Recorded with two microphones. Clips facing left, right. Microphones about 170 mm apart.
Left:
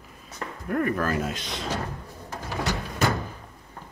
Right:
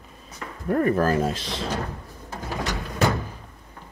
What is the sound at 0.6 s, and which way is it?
Speech, 30° right (ahead or behind).